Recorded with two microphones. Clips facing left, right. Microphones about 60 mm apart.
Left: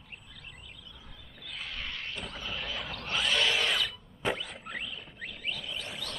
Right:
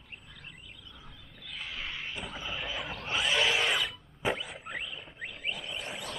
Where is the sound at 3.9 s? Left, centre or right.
Centre.